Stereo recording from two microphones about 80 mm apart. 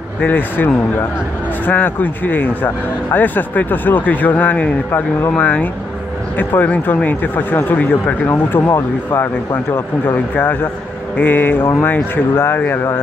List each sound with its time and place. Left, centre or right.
0.2 s speech: left
1.7 s speech: left
10.1 s speech: left